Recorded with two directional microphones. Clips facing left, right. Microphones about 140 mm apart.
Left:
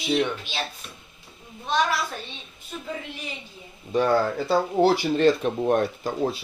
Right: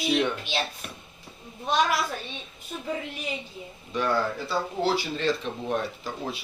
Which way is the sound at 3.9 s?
45° left (ahead or behind).